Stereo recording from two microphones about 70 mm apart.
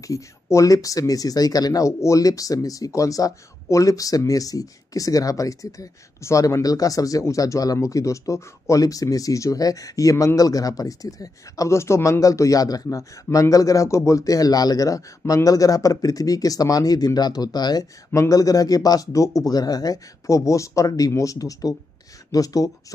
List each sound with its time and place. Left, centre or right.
0.0 s speech: left
18.3 s speech: left